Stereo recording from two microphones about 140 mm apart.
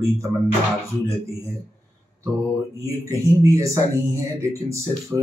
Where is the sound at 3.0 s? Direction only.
20° right (ahead or behind).